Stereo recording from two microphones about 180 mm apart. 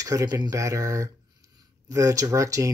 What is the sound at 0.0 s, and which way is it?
Speech, 20° right (ahead or behind).